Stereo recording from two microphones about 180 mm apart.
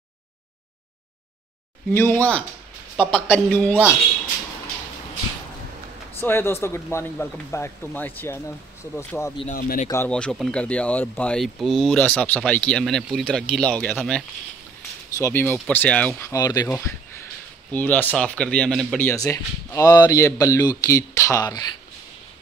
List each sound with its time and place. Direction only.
1.9 s speech: 10° left (ahead or behind)
6.2 s speech: 15° left (ahead or behind)
9.5 s speech: 45° left (ahead or behind)
9.8 s speech: 10° left (ahead or behind)